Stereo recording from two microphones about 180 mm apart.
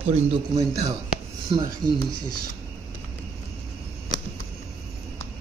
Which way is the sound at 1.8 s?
Centre (ahead or behind).